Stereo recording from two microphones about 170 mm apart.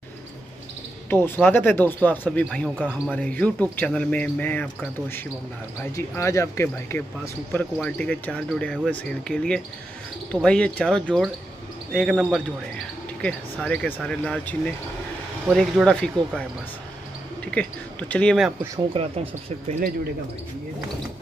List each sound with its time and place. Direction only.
1.1 s speech: 15° left (ahead or behind)
5.9 s speech: 15° left (ahead or behind)
17.5 s speech: 10° left (ahead or behind)